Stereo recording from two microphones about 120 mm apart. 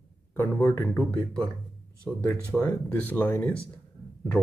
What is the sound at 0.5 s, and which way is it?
Speech, 5° left (ahead or behind).